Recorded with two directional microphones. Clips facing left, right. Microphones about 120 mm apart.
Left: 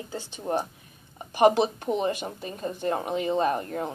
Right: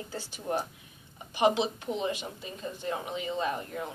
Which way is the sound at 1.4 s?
50° left (ahead or behind).